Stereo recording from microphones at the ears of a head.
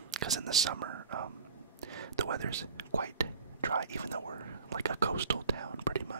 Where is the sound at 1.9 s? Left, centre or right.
Right.